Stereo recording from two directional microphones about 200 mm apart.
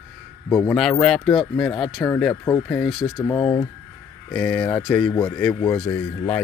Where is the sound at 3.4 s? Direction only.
20° left (ahead or behind).